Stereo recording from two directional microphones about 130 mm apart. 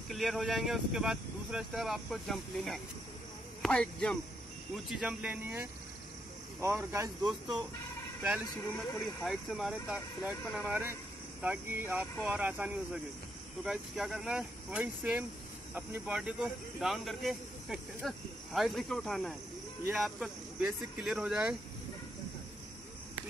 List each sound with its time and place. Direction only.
0.1 s speech: centre (ahead or behind)
4.7 s speech: 5° right (ahead or behind); by 7.1 s 20° right (ahead or behind)
7.2 s speech: 35° right (ahead or behind)
8.7 s speech: centre (ahead or behind)